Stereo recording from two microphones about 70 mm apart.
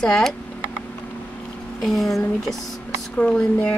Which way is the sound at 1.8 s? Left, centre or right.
Centre.